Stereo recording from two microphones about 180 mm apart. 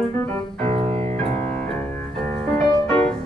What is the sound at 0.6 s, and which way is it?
Piano, 35° right (ahead or behind).